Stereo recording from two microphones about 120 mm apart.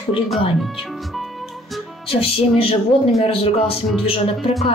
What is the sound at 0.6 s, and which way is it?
Speech, centre (ahead or behind).